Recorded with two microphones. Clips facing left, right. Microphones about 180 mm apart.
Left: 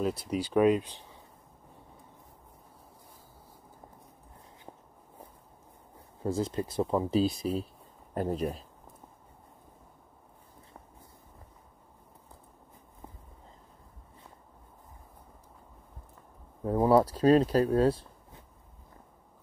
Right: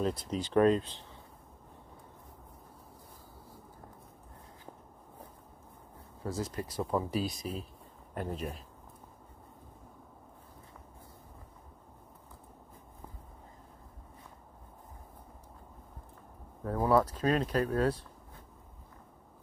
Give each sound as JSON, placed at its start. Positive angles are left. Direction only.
{"t": 0.0, "sound": "speech", "side_deg": 10}
{"t": 6.2, "sound": "speech", "side_deg": 30}
{"t": 16.6, "sound": "speech", "side_deg": 20}
{"t": 17.0, "sound": "speech", "side_deg": 35}